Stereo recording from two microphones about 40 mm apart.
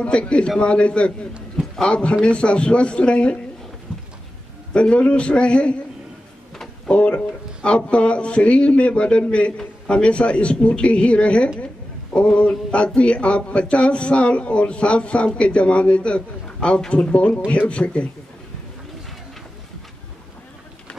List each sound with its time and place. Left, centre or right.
0.0 s a man's voice: left
3.9 s a sound: centre
4.7 s speech: left
6.9 s a man's voice: left